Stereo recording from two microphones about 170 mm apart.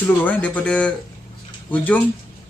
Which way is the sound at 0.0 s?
10° left (ahead or behind).